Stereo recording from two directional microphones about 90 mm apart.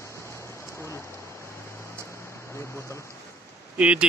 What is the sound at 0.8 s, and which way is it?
Rain, 30° left (ahead or behind).